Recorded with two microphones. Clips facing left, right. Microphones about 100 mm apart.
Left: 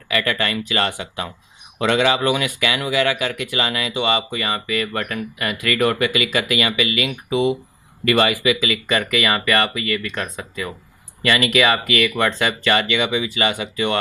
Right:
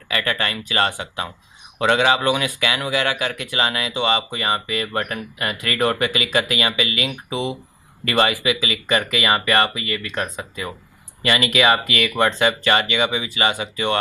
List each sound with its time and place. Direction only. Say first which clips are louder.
0.1 s speech: left 2 dB; 30° right (ahead or behind)